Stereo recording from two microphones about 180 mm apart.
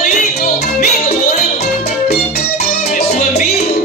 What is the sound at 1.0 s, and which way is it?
Music, 40° left (ahead or behind).